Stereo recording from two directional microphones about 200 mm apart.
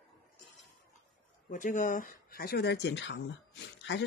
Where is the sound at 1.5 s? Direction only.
40° left (ahead or behind).